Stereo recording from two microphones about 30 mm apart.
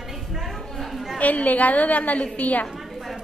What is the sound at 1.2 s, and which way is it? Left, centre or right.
A woman's voice, left.